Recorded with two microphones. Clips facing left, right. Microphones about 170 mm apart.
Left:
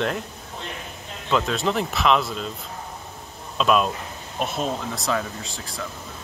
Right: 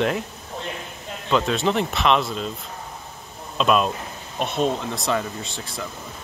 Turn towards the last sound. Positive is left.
turn(degrees=0)  # may be behind; listen again after turning